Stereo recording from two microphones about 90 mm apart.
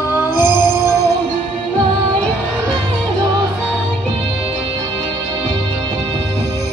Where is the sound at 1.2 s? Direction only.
60° right (ahead or behind).